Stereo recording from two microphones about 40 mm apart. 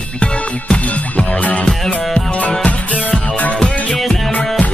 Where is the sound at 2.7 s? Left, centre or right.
Left.